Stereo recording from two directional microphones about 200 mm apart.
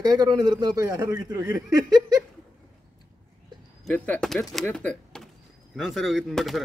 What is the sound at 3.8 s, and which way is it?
Speech, 5° left (ahead or behind).